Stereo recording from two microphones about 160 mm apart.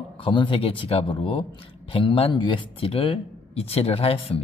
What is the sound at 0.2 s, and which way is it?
Speech, 30° left (ahead or behind).